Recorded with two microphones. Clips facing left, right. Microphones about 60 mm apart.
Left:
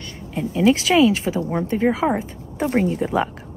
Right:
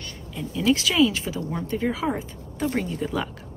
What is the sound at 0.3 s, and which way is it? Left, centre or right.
Speech, left.